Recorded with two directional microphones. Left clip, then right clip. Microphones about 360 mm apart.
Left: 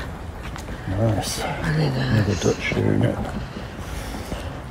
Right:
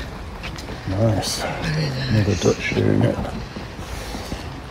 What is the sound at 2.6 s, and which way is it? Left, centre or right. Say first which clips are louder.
Speech: right 2 dB; right.